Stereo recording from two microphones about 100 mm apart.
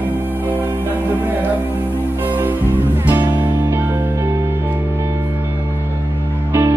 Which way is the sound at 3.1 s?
25° right (ahead or behind).